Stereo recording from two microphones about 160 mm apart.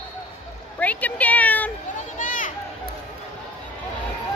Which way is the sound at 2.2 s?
55° left (ahead or behind).